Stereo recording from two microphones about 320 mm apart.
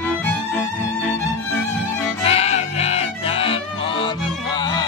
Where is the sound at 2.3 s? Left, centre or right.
Centre.